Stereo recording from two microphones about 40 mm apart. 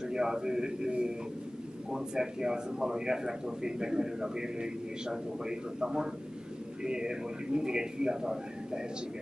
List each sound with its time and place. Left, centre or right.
0.1 s a man's voice: centre